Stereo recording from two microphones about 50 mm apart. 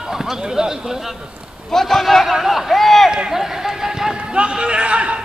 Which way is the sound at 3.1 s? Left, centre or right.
Centre.